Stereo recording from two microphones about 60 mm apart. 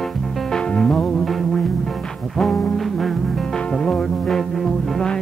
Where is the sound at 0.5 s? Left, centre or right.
Centre.